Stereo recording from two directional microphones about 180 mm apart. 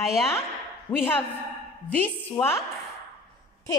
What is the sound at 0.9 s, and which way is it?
Speech, 10° left (ahead or behind).